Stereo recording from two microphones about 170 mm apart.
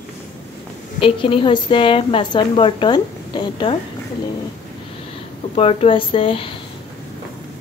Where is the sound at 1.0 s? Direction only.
30° left (ahead or behind).